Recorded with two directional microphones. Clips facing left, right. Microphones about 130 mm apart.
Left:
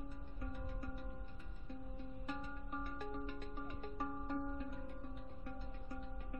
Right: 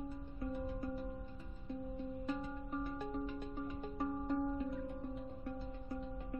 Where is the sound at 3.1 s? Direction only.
Centre (ahead or behind).